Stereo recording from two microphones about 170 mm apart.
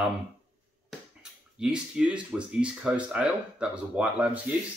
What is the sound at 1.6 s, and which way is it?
Speech, 5° right (ahead or behind).